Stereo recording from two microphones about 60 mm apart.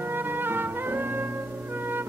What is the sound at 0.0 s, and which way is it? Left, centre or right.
Music, right.